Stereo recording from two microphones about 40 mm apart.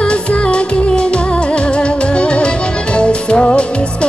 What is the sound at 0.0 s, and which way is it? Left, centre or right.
Music, left.